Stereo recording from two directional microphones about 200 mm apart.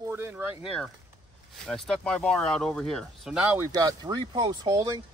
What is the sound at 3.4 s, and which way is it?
Speech, 15° right (ahead or behind).